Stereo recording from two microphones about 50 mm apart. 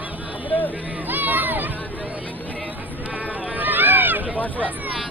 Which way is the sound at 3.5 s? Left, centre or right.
Right.